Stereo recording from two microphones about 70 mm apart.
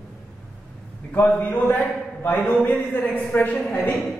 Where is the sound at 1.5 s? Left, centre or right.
Left.